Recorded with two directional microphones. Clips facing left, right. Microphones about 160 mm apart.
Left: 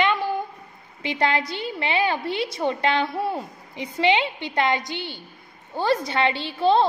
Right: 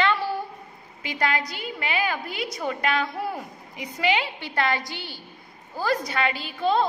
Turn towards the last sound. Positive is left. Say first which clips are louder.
# left 4 dB
turn(degrees=30)  # may be behind; listen again after turning